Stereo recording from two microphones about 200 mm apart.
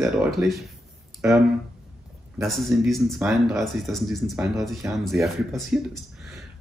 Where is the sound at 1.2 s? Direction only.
15° right (ahead or behind).